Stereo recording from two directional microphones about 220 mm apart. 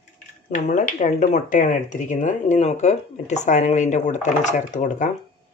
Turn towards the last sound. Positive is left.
turn(degrees=35)  # may be behind; listen again after turning